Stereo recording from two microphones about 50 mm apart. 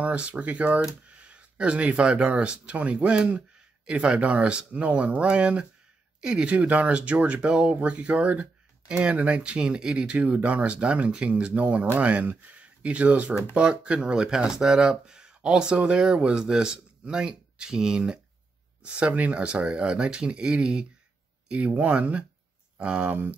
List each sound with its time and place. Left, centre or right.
0.0 s speech: right
10.1 s speech: right
13.3 s speech: left
13.6 s speech: right